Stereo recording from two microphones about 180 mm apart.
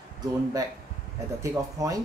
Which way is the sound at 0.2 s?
20° right (ahead or behind).